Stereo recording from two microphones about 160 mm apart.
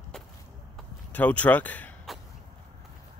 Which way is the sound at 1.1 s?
10° left (ahead or behind).